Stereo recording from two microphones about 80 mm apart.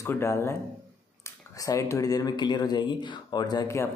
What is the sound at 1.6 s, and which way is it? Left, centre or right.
Speech, left.